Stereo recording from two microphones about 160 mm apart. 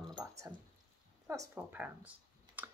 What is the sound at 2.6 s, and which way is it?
Computer keyboard, 10° right (ahead or behind).